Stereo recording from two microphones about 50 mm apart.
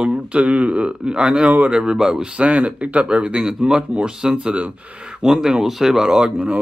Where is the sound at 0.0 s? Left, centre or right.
Right.